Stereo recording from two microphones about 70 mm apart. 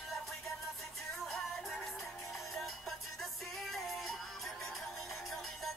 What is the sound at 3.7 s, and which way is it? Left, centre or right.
Music, centre.